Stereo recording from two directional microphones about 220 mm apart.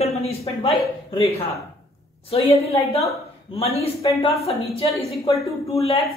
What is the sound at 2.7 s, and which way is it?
A woman's voice, 30° left (ahead or behind).